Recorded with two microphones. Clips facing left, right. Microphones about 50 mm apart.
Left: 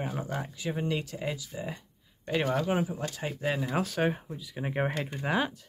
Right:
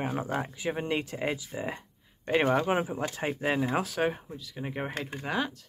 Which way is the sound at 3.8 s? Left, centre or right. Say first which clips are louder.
Even; centre.